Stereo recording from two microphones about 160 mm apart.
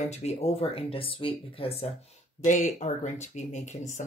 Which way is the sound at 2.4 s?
50° left (ahead or behind).